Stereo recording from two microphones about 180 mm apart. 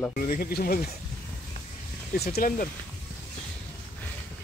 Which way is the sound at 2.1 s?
60° left (ahead or behind).